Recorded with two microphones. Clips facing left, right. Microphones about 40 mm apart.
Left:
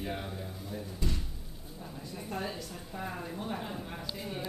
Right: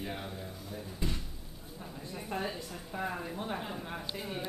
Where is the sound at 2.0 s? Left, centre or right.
Right.